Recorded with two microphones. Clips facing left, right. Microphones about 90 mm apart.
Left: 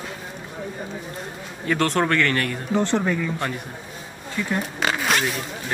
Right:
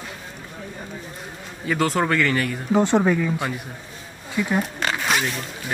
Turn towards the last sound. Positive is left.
turn(degrees=0)  # may be behind; listen again after turning